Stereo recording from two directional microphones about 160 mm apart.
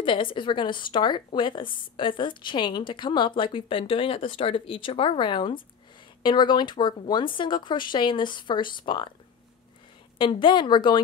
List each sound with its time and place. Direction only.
0.0 s speech: 30° left (ahead or behind)
10.1 s speech: 30° left (ahead or behind)